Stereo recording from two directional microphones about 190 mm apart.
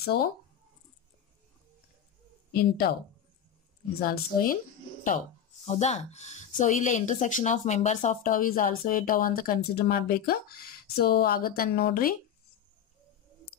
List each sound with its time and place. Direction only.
0.0 s speech: 55° left (ahead or behind)
2.5 s speech: 55° left (ahead or behind)
4.0 s speech: 50° left (ahead or behind)
5.7 s speech: 35° left (ahead or behind)